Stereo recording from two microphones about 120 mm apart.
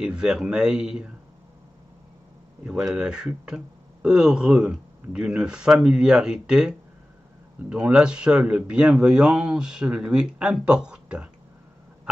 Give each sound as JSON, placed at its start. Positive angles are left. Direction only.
{"t": 0.0, "sound": "speech", "side_deg": -5}
{"t": 2.9, "sound": "speech", "side_deg": -5}
{"t": 7.7, "sound": "speech", "side_deg": -5}